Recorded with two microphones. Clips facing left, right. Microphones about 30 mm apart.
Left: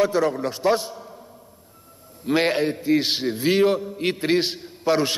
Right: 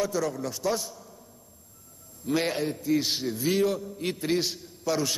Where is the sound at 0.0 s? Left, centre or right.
Left.